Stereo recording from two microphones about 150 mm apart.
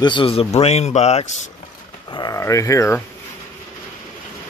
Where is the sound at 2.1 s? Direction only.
25° left (ahead or behind).